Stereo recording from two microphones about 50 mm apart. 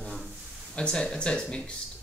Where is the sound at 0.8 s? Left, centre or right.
Centre.